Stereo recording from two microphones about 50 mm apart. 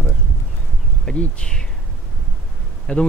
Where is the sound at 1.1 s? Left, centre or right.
Centre.